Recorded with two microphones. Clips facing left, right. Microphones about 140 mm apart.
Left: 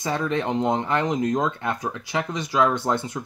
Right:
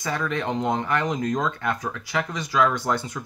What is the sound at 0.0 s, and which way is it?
Speech, 25° left (ahead or behind).